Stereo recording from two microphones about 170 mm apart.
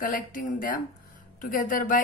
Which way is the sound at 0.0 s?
55° left (ahead or behind).